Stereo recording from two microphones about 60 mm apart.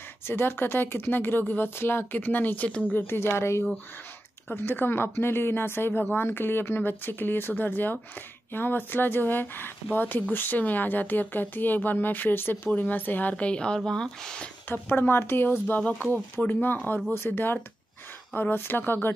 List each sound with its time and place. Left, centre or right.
0.3 s speech: left
2.9 s speech: left
4.5 s a woman's voice: left; by 14.5 s centre
14.7 s speech: left
15.6 s speech: left